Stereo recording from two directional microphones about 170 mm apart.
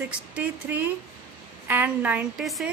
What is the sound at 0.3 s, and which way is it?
A woman's voice, 10° right (ahead or behind).